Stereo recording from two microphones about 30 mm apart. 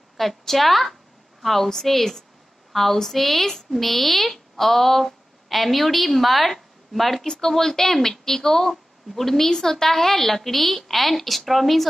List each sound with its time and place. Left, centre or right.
0.2 s a woman's voice: centre
7.2 s a woman's voice: centre